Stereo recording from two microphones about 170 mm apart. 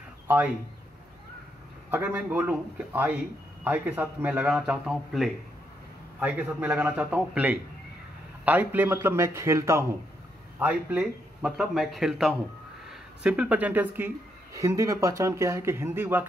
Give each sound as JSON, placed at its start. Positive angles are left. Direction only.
{"t": 1.9, "sound": "a man's voice", "side_deg": -10}